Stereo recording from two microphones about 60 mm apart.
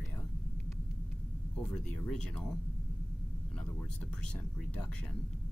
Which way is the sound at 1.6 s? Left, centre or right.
Centre.